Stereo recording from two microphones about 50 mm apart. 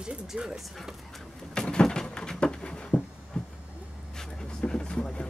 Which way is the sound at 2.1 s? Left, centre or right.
Centre.